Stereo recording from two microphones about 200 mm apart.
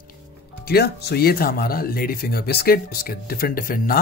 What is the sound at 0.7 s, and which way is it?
Speech, 50° left (ahead or behind).